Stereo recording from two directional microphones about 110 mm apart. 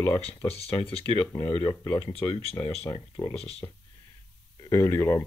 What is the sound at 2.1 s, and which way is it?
Speech, 60° left (ahead or behind).